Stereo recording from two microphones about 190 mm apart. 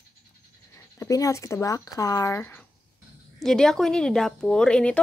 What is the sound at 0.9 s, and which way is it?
A woman's voice, 15° left (ahead or behind).